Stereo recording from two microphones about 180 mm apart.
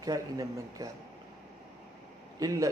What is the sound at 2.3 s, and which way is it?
Speech, 20° right (ahead or behind).